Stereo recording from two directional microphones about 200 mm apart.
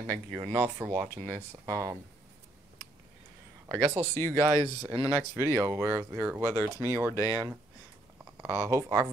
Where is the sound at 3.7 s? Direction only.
10° right (ahead or behind).